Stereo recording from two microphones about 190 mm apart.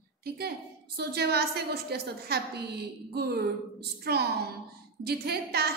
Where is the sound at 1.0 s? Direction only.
55° right (ahead or behind).